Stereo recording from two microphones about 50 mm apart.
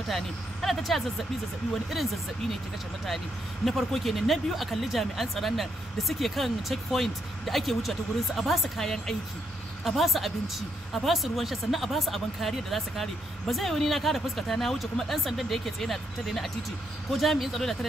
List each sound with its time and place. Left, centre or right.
0.1 s speech: centre
3.6 s speech: centre
9.8 s speech: centre